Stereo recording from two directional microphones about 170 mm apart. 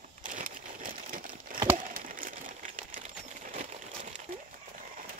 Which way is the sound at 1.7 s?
50° right (ahead or behind).